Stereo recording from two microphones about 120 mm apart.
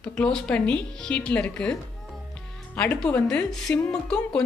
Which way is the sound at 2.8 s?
10° left (ahead or behind).